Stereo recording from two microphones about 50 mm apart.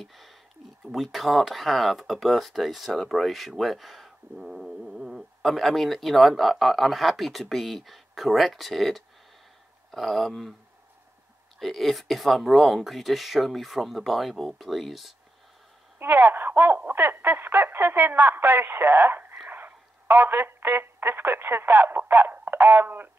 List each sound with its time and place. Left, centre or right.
0.0 s speech: centre
11.6 s speech: centre
16.0 s a woman's voice: right